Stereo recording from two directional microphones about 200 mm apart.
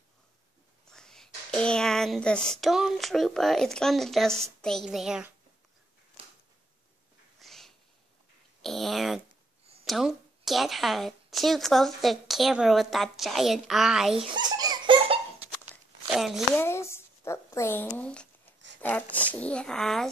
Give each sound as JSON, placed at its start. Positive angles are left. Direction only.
{"t": 0.8, "sound": "speech", "side_deg": 5}
{"t": 6.2, "sound": "a sound", "side_deg": -25}
{"t": 7.3, "sound": "a sound", "side_deg": 0}
{"t": 8.6, "sound": "speech", "side_deg": 0}
{"t": 14.1, "sound": "baby laughter", "side_deg": -20}
{"t": 16.1, "sound": "speech", "side_deg": 0}
{"t": 16.5, "sound": "speech", "side_deg": 10}